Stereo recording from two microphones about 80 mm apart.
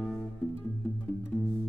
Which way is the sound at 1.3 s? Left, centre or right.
Centre.